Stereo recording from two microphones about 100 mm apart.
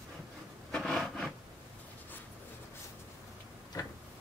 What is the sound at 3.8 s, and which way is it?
Tick-tock, 40° left (ahead or behind).